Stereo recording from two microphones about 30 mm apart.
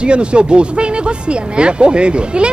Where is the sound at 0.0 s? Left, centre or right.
Right.